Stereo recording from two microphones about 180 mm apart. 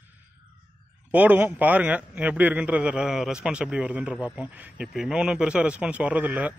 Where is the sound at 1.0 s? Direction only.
10° right (ahead or behind).